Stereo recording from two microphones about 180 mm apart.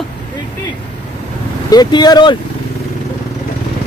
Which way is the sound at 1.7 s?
25° left (ahead or behind).